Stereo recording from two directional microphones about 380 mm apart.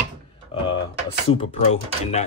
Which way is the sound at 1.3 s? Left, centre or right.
Centre.